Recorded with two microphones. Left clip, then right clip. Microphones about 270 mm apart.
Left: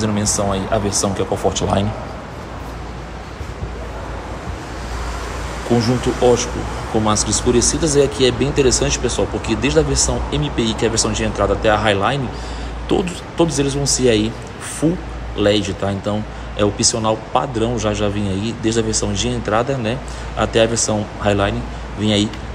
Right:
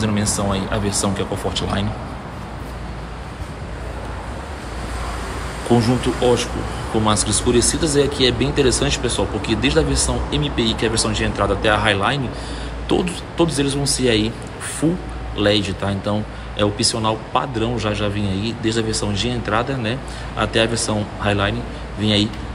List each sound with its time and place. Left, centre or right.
0.0 s speech: centre
5.7 s speech: centre
6.1 s speech: centre
7.0 s speech: centre
7.5 s speech: centre
8.2 s speech: centre
15.3 s speech: centre